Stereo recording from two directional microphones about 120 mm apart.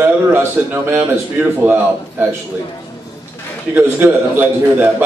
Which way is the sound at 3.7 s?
20° right (ahead or behind).